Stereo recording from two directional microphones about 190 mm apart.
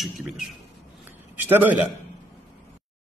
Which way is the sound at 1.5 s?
10° right (ahead or behind).